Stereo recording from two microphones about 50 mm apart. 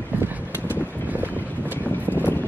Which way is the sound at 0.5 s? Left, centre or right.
Left.